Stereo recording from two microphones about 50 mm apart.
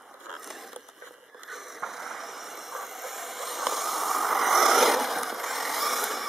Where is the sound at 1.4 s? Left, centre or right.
Centre.